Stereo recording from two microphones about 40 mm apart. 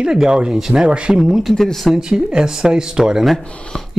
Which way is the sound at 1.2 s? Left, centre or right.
Centre.